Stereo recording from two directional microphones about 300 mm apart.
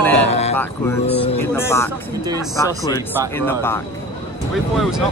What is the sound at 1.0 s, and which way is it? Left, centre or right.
Speech, centre.